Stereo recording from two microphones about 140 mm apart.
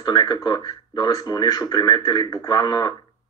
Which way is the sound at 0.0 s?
30° left (ahead or behind).